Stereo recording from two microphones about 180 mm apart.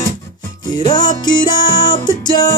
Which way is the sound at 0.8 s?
25° left (ahead or behind).